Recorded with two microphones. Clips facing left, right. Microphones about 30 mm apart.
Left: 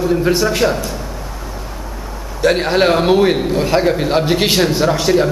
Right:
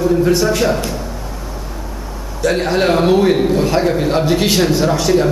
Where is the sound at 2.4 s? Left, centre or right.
Centre.